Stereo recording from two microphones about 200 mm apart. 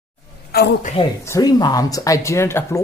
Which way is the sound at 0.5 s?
55° left (ahead or behind).